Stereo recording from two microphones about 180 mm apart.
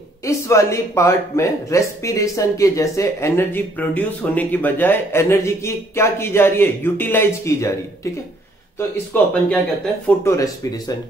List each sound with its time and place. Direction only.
0.2 s speech: 15° left (ahead or behind)